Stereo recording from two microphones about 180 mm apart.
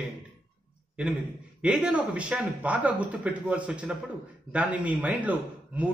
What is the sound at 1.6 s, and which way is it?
A man's voice, 5° right (ahead or behind).